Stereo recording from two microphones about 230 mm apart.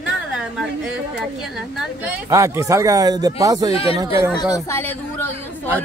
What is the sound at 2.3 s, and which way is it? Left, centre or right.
Speech, centre.